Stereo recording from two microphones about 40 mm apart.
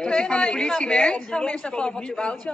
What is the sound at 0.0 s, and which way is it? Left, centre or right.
A woman's voice, left.